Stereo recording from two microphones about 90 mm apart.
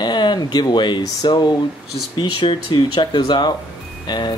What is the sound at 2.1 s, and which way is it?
Speech, 65° left (ahead or behind).